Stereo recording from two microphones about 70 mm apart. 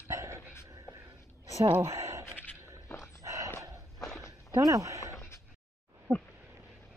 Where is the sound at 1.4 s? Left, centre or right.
Right.